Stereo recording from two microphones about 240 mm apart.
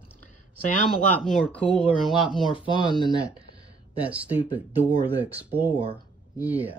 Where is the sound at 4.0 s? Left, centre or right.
Centre.